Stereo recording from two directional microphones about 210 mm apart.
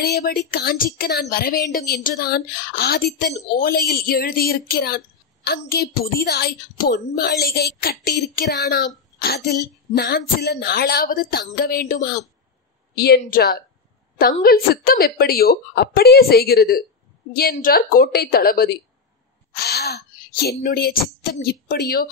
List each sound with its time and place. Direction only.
0.0 s a woman's voice: 50° left (ahead or behind)